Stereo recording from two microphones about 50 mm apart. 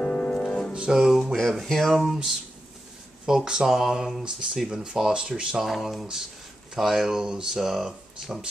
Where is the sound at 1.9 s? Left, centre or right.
Centre.